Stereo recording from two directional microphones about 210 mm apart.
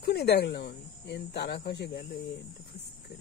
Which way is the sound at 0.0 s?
50° left (ahead or behind).